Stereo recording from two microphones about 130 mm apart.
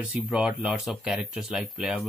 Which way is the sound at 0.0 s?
5° right (ahead or behind).